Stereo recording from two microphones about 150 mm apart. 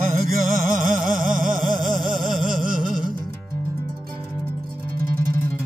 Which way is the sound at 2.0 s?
Centre (ahead or behind).